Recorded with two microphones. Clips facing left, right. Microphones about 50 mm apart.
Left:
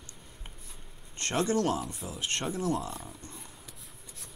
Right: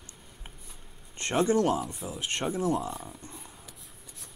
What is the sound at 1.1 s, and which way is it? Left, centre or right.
Speech, centre.